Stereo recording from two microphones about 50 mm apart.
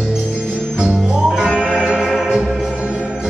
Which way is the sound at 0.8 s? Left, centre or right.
Centre.